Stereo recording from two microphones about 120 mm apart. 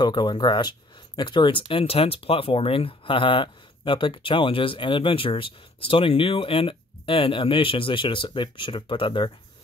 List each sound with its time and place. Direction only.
0.0 s speech: 40° left (ahead or behind)